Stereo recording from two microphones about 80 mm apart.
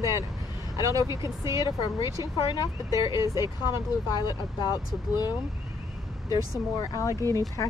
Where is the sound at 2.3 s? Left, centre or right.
Left.